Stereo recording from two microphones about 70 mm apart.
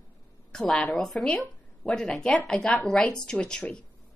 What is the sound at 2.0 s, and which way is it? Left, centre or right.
A woman's voice, centre.